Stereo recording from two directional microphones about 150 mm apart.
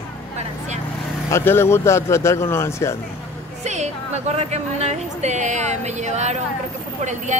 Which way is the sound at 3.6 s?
50° right (ahead or behind).